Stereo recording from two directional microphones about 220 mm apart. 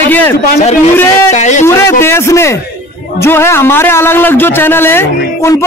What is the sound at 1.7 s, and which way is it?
A man's voice, 10° left (ahead or behind).